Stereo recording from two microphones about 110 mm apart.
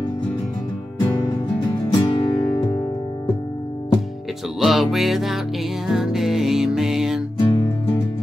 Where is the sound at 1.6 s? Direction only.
45° left (ahead or behind).